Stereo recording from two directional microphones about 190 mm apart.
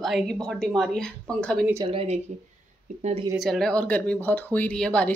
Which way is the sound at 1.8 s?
30° right (ahead or behind).